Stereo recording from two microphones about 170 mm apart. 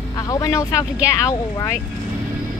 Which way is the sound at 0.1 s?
20° left (ahead or behind).